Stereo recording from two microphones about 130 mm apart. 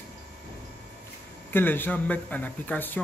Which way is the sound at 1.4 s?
15° left (ahead or behind).